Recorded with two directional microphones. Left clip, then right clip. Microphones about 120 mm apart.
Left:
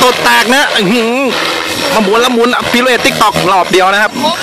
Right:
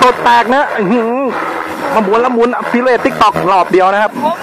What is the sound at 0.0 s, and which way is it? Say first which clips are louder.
Speech: even; 25° left (ahead or behind).